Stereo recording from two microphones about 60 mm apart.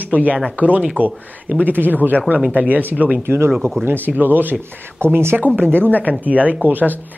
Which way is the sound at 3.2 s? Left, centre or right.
Right.